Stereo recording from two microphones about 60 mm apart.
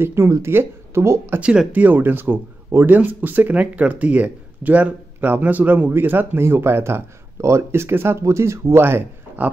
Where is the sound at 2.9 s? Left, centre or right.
Right.